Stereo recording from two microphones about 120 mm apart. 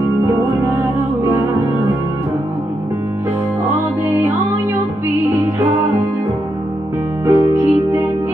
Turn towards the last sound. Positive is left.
turn(degrees=-20)  # may be behind; listen again after turning